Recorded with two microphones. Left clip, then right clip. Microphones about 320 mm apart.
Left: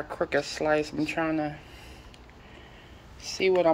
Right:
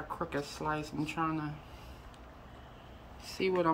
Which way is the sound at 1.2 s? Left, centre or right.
Right.